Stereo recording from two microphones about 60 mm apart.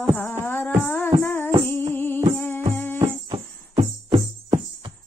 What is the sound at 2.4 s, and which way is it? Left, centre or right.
Music, left.